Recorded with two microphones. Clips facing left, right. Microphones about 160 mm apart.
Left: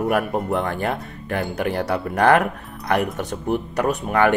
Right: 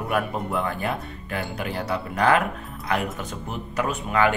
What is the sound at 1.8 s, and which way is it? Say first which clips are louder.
Speech: left 2 dB; 40° left (ahead or behind).